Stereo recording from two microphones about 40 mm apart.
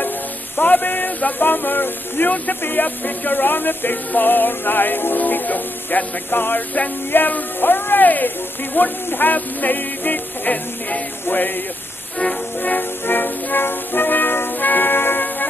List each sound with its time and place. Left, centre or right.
0.6 s a sound: left
2.6 s music: left
7.1 s speech: left
8.7 s music: left
11.2 s music: left
13.0 s music: left